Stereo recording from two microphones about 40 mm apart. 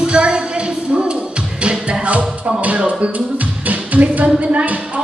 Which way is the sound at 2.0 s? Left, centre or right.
Right.